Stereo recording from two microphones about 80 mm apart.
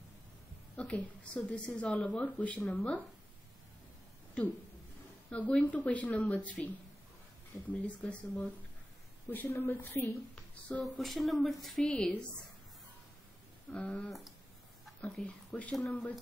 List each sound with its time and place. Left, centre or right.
0.7 s speech: centre
5.3 s speech: centre
10.0 s speech: centre
13.7 s speech: centre
15.2 s speech: centre
15.7 s speech: centre